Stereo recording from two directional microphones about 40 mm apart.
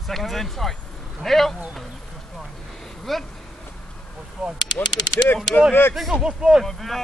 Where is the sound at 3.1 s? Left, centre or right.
Centre.